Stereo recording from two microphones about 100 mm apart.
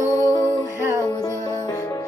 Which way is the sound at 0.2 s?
30° left (ahead or behind).